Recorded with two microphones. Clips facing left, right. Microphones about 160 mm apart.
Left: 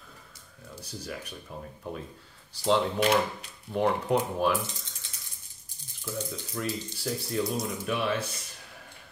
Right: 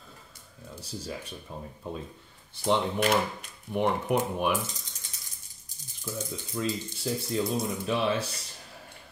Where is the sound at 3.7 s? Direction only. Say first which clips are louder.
Left 1 dB; 20° right (ahead or behind).